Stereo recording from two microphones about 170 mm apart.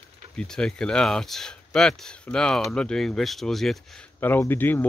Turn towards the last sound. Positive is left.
turn(degrees=10)  # may be behind; listen again after turning